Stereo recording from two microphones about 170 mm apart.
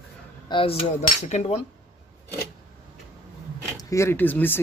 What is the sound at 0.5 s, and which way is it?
Cutlery, 30° left (ahead or behind).